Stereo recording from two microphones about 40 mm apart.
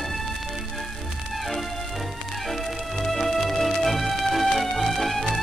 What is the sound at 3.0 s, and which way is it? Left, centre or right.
Music, centre.